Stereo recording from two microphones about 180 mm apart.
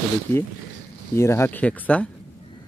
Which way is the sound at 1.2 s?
15° left (ahead or behind).